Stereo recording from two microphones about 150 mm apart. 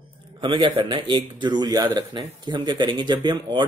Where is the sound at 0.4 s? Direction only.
35° right (ahead or behind).